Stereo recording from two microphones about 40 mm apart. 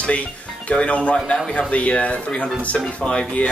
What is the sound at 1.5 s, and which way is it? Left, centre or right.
A man's voice, left.